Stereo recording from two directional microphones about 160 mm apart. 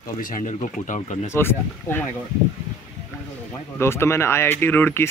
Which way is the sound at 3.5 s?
15° left (ahead or behind).